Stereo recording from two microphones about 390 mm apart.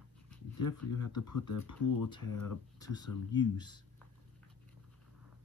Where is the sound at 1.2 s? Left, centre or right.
Left.